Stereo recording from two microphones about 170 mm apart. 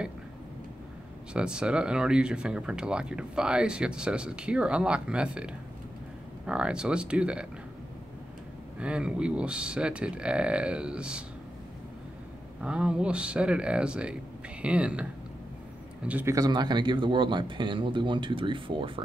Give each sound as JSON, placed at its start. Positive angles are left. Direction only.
{"t": 1.3, "sound": "speech", "side_deg": -5}
{"t": 8.7, "sound": "speech", "side_deg": -5}
{"t": 12.6, "sound": "speech", "side_deg": -5}
{"t": 16.1, "sound": "speech", "side_deg": -10}
{"t": 16.3, "sound": "speech", "side_deg": -25}